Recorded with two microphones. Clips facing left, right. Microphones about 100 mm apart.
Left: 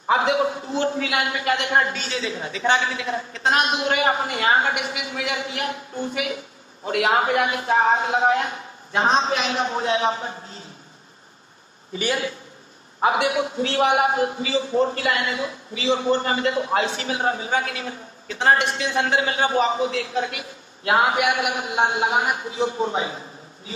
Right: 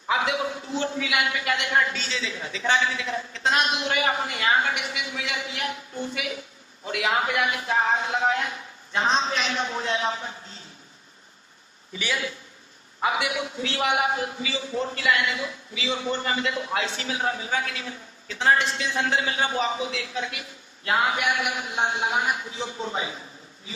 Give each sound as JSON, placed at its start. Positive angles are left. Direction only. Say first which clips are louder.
{"t": 0.1, "sound": "a man's voice", "louder": "left 5 dB", "side_deg": 40}
{"t": 2.0, "sound": "a man's voice", "louder": "left 4 dB", "side_deg": 55}
{"t": 11.9, "sound": "a man's voice", "louder": "left 5 dB", "side_deg": 45}